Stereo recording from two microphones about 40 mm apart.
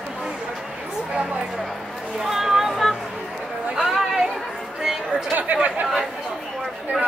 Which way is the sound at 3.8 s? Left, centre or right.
Centre.